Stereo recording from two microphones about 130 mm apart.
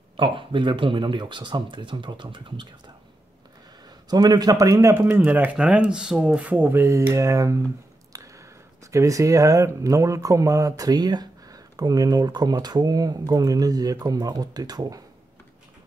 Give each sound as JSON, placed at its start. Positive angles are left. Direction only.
{"t": 0.2, "sound": "speech", "side_deg": -40}
{"t": 4.1, "sound": "speech", "side_deg": -30}
{"t": 8.1, "sound": "a sound", "side_deg": -25}
{"t": 8.9, "sound": "speech", "side_deg": -25}